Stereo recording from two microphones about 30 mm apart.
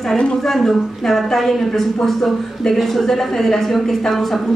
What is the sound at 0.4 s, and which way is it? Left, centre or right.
A woman's voice, centre.